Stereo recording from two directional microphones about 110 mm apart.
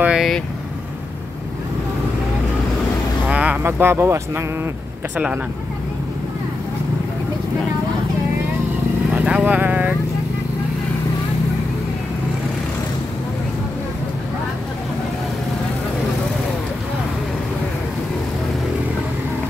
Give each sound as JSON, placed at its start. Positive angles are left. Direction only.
{"t": 0.0, "sound": "vehicle", "side_deg": -5}
{"t": 3.3, "sound": "vehicle", "side_deg": -10}
{"t": 3.6, "sound": "speech", "side_deg": -20}
{"t": 5.1, "sound": "speech", "side_deg": -15}
{"t": 9.1, "sound": "vehicle", "side_deg": -10}